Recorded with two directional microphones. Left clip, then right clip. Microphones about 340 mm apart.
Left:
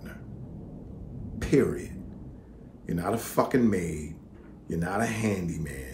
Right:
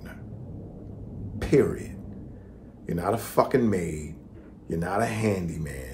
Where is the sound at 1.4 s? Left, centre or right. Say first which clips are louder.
Right 2 dB; centre.